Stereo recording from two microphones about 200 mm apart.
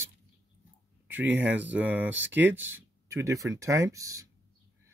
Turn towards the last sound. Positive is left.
turn(degrees=-15)  # may be behind; listen again after turning